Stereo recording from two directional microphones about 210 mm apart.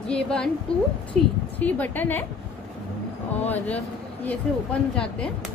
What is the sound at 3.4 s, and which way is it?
A woman's voice, 10° left (ahead or behind).